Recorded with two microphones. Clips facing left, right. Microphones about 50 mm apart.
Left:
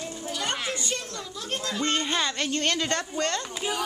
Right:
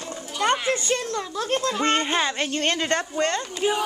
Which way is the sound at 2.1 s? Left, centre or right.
Right.